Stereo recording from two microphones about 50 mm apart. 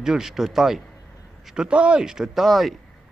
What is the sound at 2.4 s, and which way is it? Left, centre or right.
Speech, centre.